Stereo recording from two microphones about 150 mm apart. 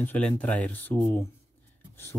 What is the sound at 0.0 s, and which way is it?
Speech, 10° left (ahead or behind).